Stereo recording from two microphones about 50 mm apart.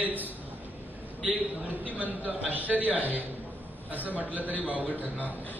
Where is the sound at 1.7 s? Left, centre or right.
Left.